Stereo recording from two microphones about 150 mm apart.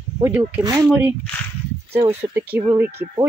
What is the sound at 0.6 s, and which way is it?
Speech, 25° right (ahead or behind).